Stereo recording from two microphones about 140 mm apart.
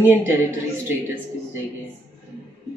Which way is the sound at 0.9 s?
15° right (ahead or behind).